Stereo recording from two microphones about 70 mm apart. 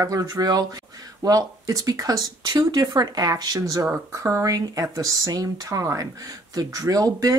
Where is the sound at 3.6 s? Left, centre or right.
Right.